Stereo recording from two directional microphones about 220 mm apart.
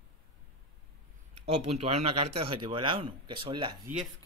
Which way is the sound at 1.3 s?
30° right (ahead or behind).